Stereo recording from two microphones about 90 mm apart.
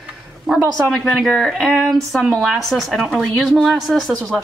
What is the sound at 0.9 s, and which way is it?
A woman's voice, 5° left (ahead or behind).